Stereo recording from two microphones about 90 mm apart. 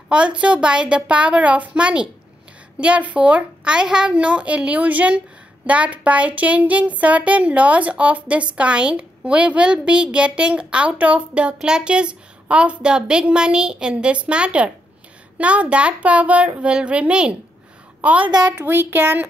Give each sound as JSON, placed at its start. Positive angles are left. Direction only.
{"t": 0.1, "sound": "a woman's voice", "side_deg": -15}
{"t": 18.2, "sound": "a child's voice", "side_deg": -50}
{"t": 18.7, "sound": "speech", "side_deg": -20}